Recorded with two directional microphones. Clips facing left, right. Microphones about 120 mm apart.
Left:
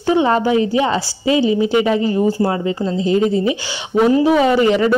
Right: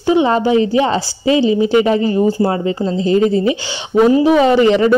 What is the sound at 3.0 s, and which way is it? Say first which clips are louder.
Speech: right 3 dB; 35° right (ahead or behind).